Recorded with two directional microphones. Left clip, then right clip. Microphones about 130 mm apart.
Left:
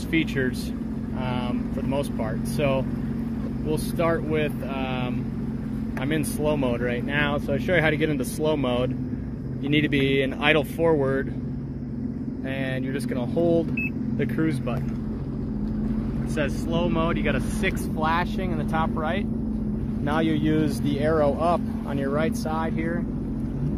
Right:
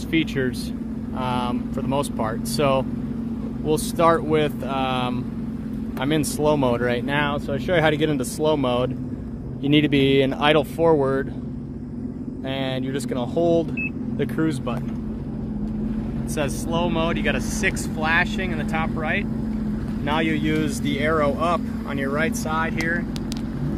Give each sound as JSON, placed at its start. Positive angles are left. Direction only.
{"t": 0.1, "sound": "speech", "side_deg": -25}
{"t": 4.0, "sound": "speech", "side_deg": -40}
{"t": 7.2, "sound": "speech", "side_deg": 0}
{"t": 7.7, "sound": "speech", "side_deg": -25}
{"t": 9.7, "sound": "speech", "side_deg": -35}
{"t": 10.5, "sound": "speech", "side_deg": -20}
{"t": 13.1, "sound": "speech", "side_deg": -20}
{"t": 16.7, "sound": "speech", "side_deg": 0}
{"t": 18.8, "sound": "speech", "side_deg": 20}